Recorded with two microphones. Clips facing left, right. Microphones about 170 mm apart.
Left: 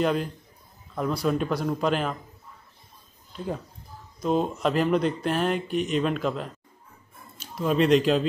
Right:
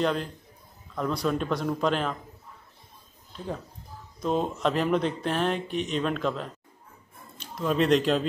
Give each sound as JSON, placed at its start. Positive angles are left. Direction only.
{"t": 0.0, "sound": "a man's voice", "side_deg": 10}
{"t": 4.2, "sound": "speech", "side_deg": 0}